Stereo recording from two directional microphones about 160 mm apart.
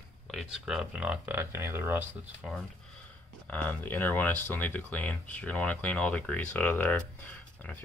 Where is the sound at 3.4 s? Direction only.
10° left (ahead or behind).